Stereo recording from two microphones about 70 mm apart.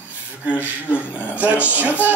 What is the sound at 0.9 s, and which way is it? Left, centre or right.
Speech, right.